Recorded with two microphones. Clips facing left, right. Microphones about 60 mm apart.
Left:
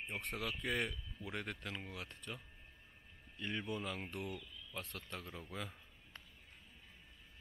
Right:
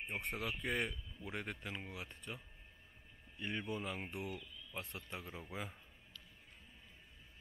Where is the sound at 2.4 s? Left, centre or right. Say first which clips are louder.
Left 1 dB; centre.